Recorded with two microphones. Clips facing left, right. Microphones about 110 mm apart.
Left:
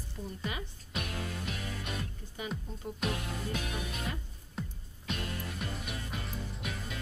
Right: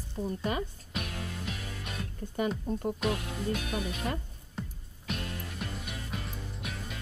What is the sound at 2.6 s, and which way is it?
Speech, 50° right (ahead or behind).